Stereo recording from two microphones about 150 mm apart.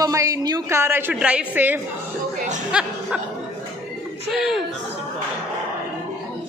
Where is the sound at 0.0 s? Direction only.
20° right (ahead or behind).